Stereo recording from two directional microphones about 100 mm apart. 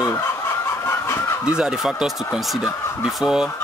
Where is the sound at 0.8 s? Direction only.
25° left (ahead or behind).